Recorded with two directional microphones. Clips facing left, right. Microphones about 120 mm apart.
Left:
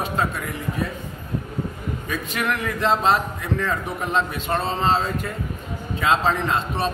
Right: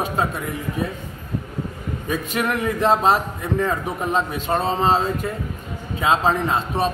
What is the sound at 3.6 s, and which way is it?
A man's voice, 15° right (ahead or behind).